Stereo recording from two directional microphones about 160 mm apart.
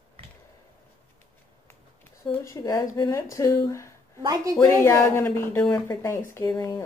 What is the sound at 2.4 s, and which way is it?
Speech, 20° left (ahead or behind).